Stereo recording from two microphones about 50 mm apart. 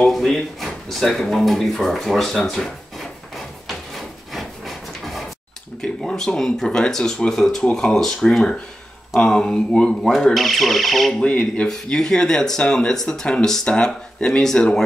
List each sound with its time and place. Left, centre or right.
0.1 s a sound: centre
5.8 s speech: centre
10.0 s speech: centre
11.1 s speech: centre